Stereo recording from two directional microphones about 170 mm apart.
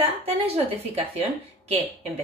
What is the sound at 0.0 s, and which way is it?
A woman's voice, 35° right (ahead or behind).